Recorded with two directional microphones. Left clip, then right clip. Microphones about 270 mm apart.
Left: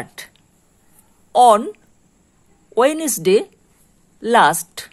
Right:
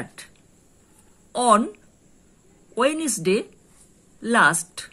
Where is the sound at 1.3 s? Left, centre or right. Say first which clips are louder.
Left 7 dB; left.